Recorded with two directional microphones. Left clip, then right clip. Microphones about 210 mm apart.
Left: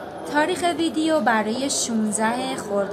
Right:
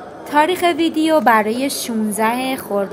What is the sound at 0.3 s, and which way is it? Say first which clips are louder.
A woman's voice: right 6 dB; 20° right (ahead or behind).